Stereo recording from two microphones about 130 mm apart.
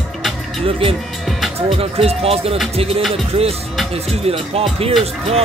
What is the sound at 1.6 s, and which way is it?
Speech, 50° right (ahead or behind).